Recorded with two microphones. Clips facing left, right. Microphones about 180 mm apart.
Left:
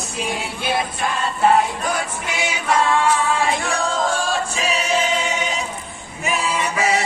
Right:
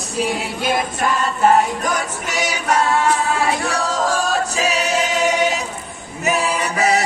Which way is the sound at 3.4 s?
40° right (ahead or behind).